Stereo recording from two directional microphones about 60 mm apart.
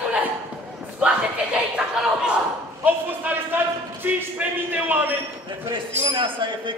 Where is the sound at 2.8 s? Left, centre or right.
Right.